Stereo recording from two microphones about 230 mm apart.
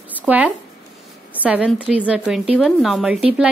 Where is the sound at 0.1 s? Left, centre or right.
Centre.